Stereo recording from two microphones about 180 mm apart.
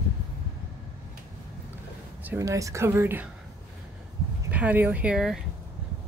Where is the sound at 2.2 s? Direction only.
15° right (ahead or behind).